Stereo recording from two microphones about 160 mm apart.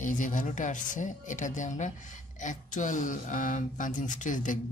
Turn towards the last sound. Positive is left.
turn(degrees=55)  # may be behind; listen again after turning